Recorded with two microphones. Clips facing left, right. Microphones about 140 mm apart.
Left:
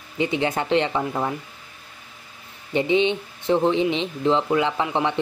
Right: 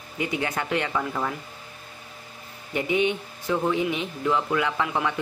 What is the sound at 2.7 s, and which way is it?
Speech, 25° left (ahead or behind).